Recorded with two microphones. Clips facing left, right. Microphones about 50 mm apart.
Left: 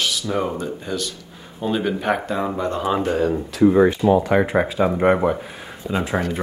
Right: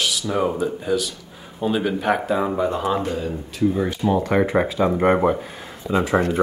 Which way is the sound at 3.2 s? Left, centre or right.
Left.